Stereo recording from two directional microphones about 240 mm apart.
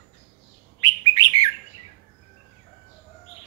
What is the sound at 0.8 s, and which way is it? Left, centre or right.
Bird, centre.